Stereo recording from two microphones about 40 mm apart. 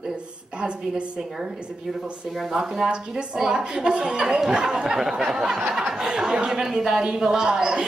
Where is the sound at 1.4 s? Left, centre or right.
Centre.